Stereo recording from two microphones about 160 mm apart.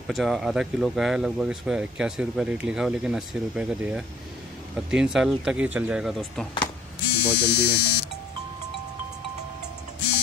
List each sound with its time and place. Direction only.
0.0 s speech: centre (ahead or behind)
6.6 s electric shaver: 90° left